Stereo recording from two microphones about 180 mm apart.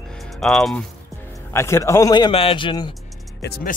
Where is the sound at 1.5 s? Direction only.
15° left (ahead or behind).